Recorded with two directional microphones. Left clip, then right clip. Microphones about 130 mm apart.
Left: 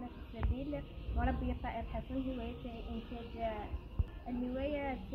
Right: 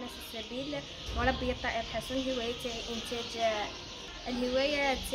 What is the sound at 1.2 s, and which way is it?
Speech, 30° right (ahead or behind).